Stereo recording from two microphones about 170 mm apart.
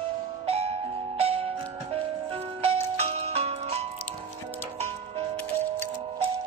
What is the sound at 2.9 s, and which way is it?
Music, 35° right (ahead or behind).